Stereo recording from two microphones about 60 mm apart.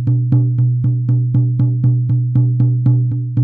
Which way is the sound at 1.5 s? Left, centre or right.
Centre.